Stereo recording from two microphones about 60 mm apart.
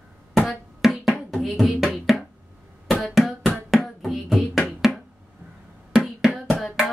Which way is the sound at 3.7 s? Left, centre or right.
Centre.